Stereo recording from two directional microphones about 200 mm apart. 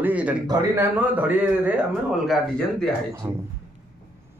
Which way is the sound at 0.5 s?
15° right (ahead or behind).